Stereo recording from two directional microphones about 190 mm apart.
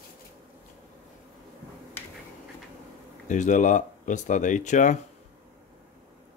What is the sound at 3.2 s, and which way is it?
Speech, 40° left (ahead or behind).